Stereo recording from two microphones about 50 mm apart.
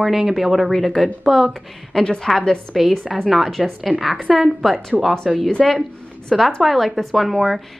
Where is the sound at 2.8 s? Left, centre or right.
Centre.